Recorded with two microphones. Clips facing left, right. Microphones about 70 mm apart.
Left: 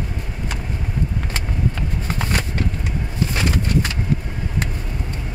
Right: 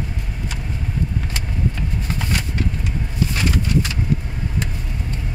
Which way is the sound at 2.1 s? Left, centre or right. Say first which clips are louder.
Left 2 dB; left.